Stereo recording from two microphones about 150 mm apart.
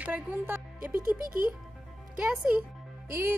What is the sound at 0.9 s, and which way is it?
Speech, 70° right (ahead or behind).